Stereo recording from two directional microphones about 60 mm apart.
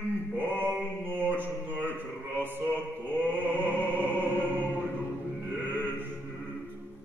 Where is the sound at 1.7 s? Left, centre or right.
Right.